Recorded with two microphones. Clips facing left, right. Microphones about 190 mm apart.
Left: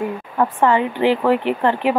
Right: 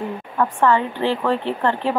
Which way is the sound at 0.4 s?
15° left (ahead or behind).